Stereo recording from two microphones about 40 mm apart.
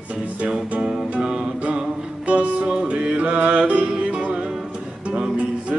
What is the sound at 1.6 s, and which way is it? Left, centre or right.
Music, right.